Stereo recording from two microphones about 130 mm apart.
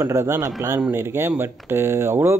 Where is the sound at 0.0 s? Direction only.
20° right (ahead or behind).